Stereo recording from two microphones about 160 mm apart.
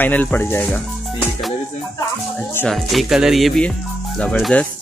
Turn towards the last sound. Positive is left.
turn(degrees=5)  # may be behind; listen again after turning